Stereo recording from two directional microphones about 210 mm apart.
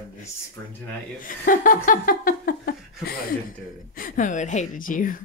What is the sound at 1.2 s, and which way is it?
Speech, 40° left (ahead or behind).